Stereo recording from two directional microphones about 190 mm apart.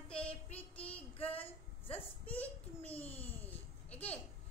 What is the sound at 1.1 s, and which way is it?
Female singing, 30° left (ahead or behind).